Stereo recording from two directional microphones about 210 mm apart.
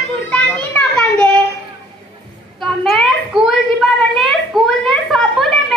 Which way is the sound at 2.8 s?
Centre (ahead or behind).